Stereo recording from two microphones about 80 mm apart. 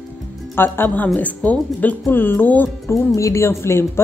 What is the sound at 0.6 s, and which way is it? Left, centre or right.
A woman's voice, left.